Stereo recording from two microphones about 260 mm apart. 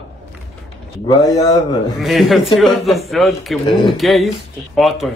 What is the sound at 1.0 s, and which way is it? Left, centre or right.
Speech, centre.